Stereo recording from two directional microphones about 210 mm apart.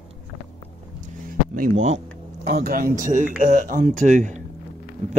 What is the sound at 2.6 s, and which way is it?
Speech, 45° right (ahead or behind).